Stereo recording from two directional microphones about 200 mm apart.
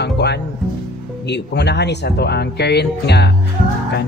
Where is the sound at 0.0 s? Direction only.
55° left (ahead or behind).